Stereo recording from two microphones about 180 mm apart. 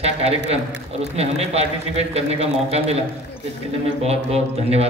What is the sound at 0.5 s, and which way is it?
Mantra, 35° right (ahead or behind).